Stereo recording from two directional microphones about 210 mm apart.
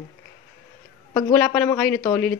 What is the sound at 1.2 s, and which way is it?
Speech, 10° left (ahead or behind).